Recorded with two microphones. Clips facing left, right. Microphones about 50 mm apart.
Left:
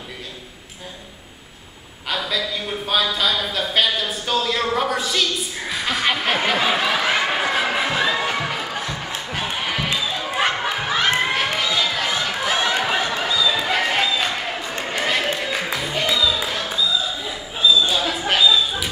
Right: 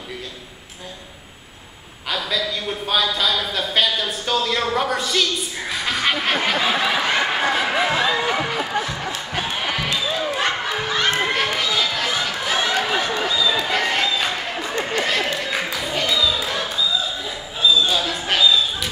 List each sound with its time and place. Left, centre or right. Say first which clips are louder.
2.0 s a man's voice: even; centre
8.5 s music: right 3 dB; centre
9.9 s a sound: right 2 dB; centre
10.3 s crowd: left 1 dB; centre
13.6 s a sound: even; centre
15.9 s music: even; centre
17.8 s dog: left 1 dB; centre